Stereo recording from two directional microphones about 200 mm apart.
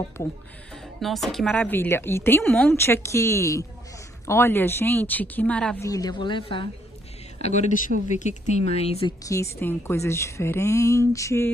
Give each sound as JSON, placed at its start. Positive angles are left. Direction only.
{"t": 1.0, "sound": "a woman's voice", "side_deg": 0}
{"t": 5.9, "sound": "a woman's voice", "side_deg": 20}
{"t": 7.4, "sound": "speech", "side_deg": 35}
{"t": 9.2, "sound": "a woman's voice", "side_deg": 15}